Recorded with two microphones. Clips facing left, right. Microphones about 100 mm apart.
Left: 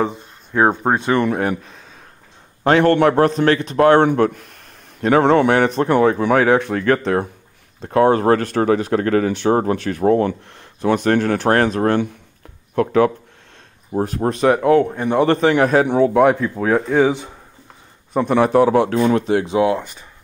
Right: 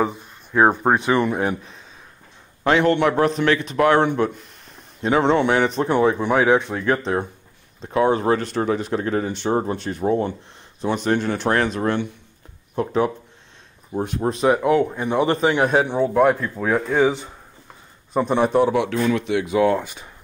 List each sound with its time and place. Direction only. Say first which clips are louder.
0.0 s a sound: left 1 dB; 5° right (ahead or behind)
0.9 s speech: left 1 dB; 15° right (ahead or behind)
1.2 s a man's voice: left 3 dB; 60° left (ahead or behind)
7.8 s speech: left 4 dB; 50° left (ahead or behind)
12.7 s speech: left 5 dB; 70° left (ahead or behind)
13.9 s a man's voice: left 3 dB; 45° left (ahead or behind)
14.3 s speech: left 2 dB; 65° left (ahead or behind)
14.6 s a man's voice: left 4 dB; 45° left (ahead or behind)
15.2 s speech: left 5 dB; 65° left (ahead or behind)
15.6 s a man's voice: left 4 dB; 50° left (ahead or behind)
16.0 s speech: left 3 dB; 90° left
16.7 s speech: left 2 dB; 5° left (ahead or behind)
18.1 s speech: left 3 dB; 65° left (ahead or behind); by 19.5 s 40° left (ahead or behind)